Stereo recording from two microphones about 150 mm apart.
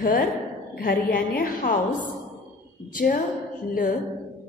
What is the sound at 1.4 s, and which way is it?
Speech, 70° left (ahead or behind).